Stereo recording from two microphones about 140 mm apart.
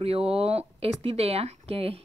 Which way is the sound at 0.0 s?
45° right (ahead or behind).